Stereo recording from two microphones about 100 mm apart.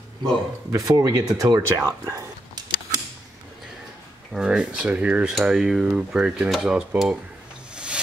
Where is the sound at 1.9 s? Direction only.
35° right (ahead or behind).